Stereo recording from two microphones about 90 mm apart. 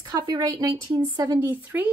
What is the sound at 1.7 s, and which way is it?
Speech, 20° right (ahead or behind).